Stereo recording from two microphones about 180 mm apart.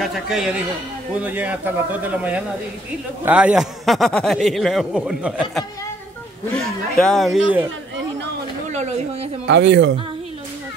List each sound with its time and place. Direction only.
0.0 s a man's voice: centre (ahead or behind)
8.7 s a woman's voice: 40° right (ahead or behind)
9.5 s a woman's voice: 80° right